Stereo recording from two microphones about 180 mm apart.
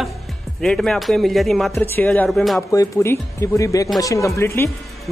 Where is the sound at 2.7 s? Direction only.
15° left (ahead or behind).